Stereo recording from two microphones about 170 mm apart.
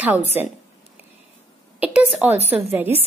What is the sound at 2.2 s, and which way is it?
Speech, 5° right (ahead or behind).